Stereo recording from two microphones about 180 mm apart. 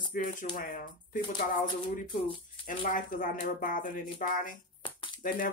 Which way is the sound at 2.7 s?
50° left (ahead or behind).